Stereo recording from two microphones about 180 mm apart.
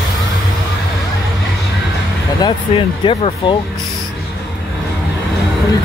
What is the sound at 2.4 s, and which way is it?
Speech, 30° left (ahead or behind).